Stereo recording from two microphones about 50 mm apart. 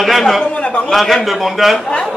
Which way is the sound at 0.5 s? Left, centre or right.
Left.